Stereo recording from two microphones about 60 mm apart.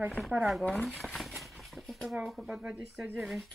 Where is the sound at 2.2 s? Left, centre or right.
Centre.